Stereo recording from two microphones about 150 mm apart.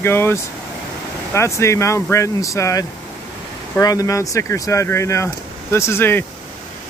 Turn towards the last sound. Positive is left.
turn(degrees=15)  # may be behind; listen again after turning